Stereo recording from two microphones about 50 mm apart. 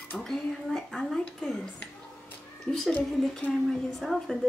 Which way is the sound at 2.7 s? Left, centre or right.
Centre.